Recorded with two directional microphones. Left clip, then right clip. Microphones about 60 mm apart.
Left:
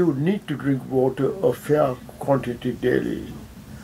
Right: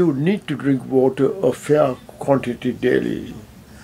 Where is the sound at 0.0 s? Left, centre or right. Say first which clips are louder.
Right 3 dB; right.